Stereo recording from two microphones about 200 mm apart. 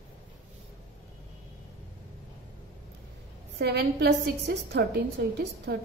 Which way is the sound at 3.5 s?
55° right (ahead or behind).